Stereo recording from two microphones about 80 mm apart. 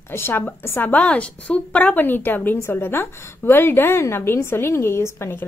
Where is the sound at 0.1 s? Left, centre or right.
Left.